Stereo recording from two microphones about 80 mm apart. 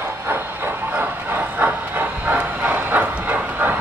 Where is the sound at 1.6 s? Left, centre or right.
Right.